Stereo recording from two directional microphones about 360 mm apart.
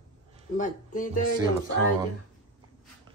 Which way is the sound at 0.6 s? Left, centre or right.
Left.